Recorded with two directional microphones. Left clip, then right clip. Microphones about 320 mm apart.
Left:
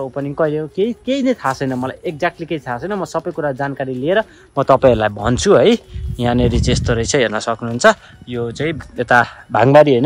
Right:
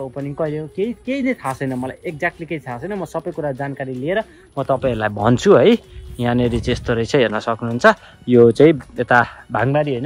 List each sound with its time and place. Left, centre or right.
0.0 s a man's voice: centre
5.1 s speech: centre
8.3 s speech: centre
8.7 s speech: centre
9.7 s speech: centre